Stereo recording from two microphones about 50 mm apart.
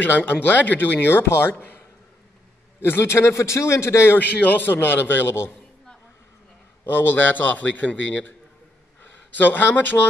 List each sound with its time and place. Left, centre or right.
0.0 s speech: left
2.8 s a man's voice: left
4.2 s a man's voice: left
6.9 s speech: left
9.4 s speech: left